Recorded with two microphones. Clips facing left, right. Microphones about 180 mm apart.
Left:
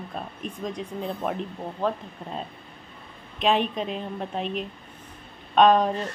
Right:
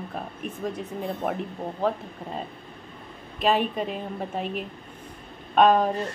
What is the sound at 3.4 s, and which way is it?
Speech, 5° right (ahead or behind).